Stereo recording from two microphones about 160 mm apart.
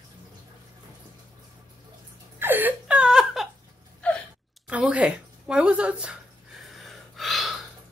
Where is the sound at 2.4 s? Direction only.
10° right (ahead or behind).